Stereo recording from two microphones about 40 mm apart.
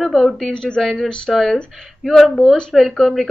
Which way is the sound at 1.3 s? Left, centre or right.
Centre.